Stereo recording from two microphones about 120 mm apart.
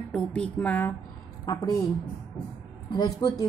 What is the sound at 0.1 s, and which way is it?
Speech, 10° left (ahead or behind).